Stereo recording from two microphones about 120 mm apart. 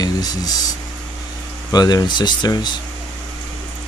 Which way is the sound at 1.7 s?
35° left (ahead or behind).